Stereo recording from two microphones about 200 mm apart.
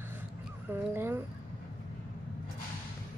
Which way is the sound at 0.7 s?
10° right (ahead or behind).